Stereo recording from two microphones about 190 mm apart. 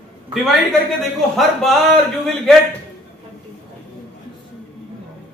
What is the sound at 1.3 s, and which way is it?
A man's voice, centre (ahead or behind).